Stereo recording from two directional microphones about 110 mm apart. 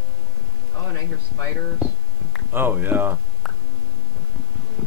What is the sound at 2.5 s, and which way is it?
Speech, 20° right (ahead or behind).